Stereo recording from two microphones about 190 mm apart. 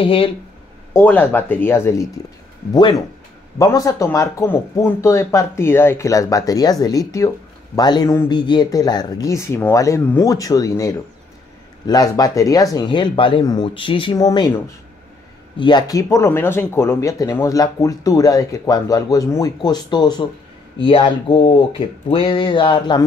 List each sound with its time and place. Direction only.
0.0 s speech: 30° left (ahead or behind)
0.9 s speech: 10° left (ahead or behind)
2.7 s speech: 25° left (ahead or behind)